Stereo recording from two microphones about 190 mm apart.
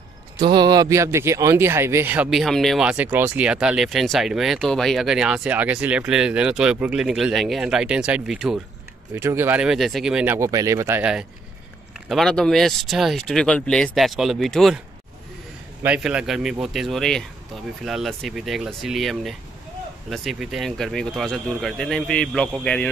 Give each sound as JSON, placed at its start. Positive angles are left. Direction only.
{"t": 0.4, "sound": "speech", "side_deg": -20}
{"t": 15.8, "sound": "speech", "side_deg": -5}